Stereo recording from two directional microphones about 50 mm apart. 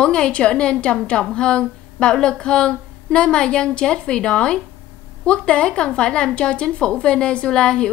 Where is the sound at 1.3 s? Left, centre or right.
Centre.